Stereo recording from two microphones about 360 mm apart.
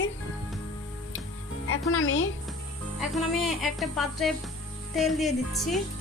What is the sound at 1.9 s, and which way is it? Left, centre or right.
Speech, left.